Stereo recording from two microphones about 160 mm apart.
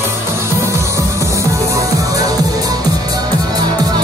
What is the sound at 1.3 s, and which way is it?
Music, 20° right (ahead or behind).